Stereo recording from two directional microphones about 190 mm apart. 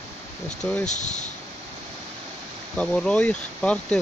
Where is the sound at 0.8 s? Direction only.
40° left (ahead or behind).